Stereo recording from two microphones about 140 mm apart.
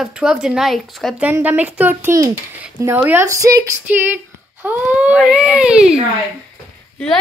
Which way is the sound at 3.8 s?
15° right (ahead or behind).